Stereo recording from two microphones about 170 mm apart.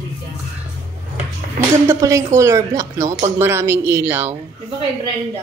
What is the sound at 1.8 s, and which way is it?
Speech, 20° right (ahead or behind).